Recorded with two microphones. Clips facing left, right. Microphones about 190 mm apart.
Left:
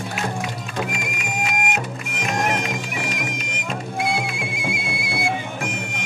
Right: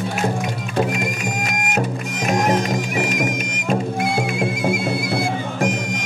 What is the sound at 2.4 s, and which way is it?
Music, 40° right (ahead or behind).